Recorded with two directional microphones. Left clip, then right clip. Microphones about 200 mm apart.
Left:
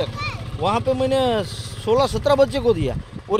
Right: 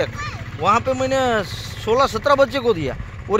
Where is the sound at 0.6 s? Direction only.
10° left (ahead or behind).